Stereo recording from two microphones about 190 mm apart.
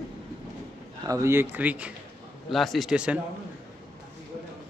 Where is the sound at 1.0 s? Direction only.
15° right (ahead or behind).